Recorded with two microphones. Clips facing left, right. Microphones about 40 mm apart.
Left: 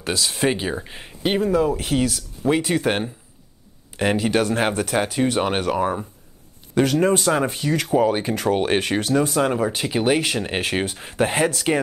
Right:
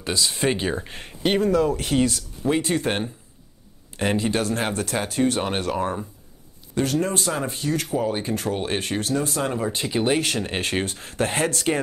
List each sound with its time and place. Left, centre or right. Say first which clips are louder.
0.3 s speech: left 1 dB; centre
1.5 s speech: left 1 dB; centre
3.9 s a sound: left 2 dB; centre
4.2 s speech: left 4 dB; left
5.8 s speech: left 3 dB; centre
6.8 s speech: left 5 dB; left
9.7 s speech: left 2 dB; centre